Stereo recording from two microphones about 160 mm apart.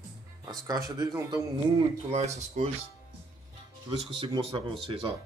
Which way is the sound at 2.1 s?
40° right (ahead or behind).